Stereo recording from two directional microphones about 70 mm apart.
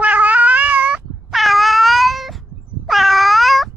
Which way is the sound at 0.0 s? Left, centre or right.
Right.